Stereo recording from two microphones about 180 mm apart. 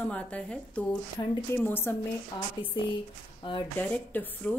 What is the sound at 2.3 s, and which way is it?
Speech, 25° left (ahead or behind).